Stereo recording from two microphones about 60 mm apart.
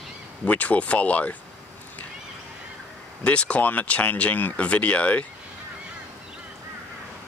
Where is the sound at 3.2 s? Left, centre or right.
Left.